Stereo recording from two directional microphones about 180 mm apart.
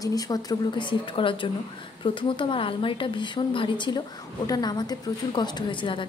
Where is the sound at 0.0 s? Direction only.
20° left (ahead or behind).